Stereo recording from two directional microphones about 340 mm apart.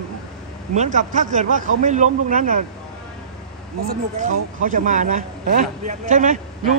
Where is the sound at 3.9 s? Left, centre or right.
Right.